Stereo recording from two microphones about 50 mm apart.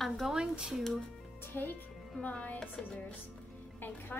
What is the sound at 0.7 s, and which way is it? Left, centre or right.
Speech, centre.